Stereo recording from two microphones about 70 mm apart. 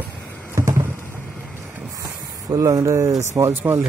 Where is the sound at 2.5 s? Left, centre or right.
Right.